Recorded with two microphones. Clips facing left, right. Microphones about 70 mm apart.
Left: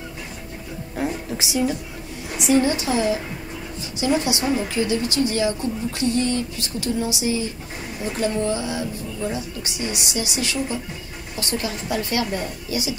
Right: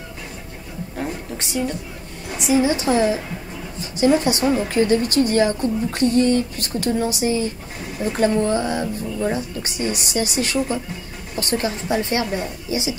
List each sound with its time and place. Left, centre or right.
0.9 s a sound: centre
2.3 s a woman's voice: centre
2.8 s a woman's voice: right